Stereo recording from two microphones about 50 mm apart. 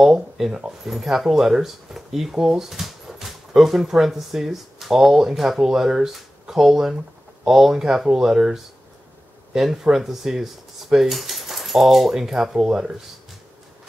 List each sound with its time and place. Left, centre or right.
0.0 s speech: centre
0.5 s speech: centre